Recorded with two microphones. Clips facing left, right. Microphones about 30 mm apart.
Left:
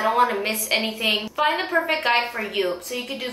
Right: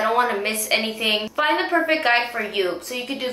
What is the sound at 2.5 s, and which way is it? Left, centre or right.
Speech, centre.